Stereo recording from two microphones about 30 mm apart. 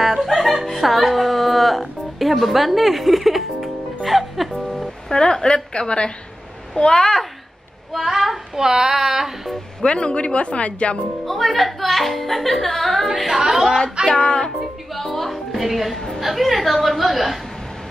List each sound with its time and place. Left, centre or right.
0.0 s music: centre
5.1 s a woman's voice: left
7.9 s child singing: centre
8.5 s speech: centre
9.8 s speech: left
11.2 s speech: centre
13.3 s speech: centre
14.0 s music: right
15.1 s music: centre
16.2 s speech: centre